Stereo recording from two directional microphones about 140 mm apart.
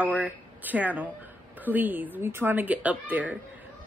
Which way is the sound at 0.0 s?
10° right (ahead or behind).